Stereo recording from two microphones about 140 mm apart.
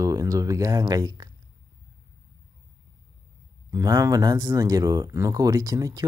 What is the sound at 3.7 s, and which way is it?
Speech, 25° right (ahead or behind).